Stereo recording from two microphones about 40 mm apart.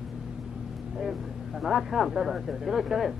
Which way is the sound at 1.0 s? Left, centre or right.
Centre.